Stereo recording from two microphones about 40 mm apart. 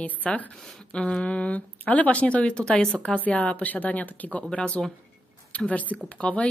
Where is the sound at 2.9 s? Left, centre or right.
Left.